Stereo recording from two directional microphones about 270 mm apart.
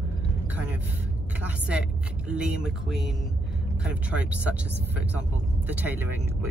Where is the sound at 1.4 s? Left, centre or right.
Centre.